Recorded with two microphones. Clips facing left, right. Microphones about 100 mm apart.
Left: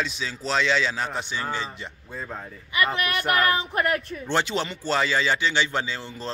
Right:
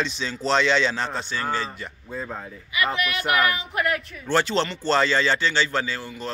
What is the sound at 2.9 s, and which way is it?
Speech, 35° left (ahead or behind).